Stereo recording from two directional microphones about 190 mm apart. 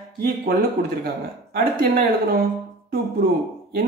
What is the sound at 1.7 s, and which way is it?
Speech, 50° right (ahead or behind).